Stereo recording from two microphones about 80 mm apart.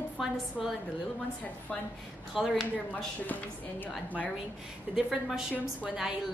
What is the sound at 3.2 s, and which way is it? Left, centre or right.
Speech, left.